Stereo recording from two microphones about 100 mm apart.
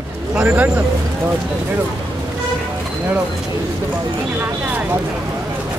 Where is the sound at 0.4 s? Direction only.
15° right (ahead or behind).